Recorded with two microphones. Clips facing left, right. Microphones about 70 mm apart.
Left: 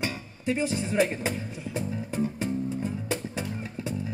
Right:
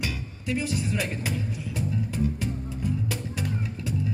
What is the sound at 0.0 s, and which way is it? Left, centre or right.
Music, left.